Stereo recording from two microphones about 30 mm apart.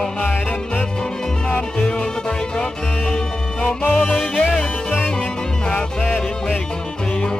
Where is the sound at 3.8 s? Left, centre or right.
Left.